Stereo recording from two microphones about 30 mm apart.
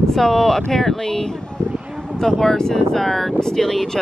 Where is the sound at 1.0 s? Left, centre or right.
Left.